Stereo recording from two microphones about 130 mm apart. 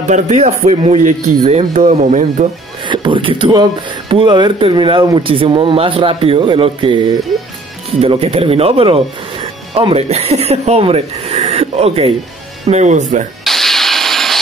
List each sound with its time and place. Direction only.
0.1 s a man's voice: 65° right (ahead or behind)
2.9 s speech: 40° right (ahead or behind)
8.0 s speech: 50° right (ahead or behind)
9.9 s speech: 55° right (ahead or behind)
12.6 s a man's voice: 65° right (ahead or behind)
13.4 s music: centre (ahead or behind)